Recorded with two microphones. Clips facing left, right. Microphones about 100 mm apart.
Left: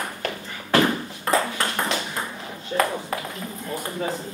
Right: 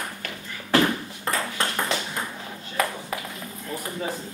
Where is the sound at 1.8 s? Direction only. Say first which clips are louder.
Left 1 dB; 5° left (ahead or behind).